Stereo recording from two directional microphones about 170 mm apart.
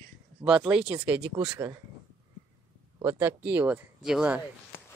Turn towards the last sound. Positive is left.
turn(degrees=-5)  # may be behind; listen again after turning